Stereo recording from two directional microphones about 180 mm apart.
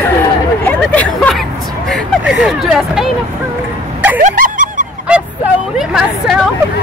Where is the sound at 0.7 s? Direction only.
5° left (ahead or behind).